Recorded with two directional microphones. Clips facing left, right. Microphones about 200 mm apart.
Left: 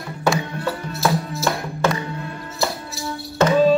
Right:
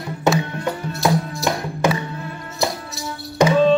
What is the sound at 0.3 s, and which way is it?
Music, 20° right (ahead or behind).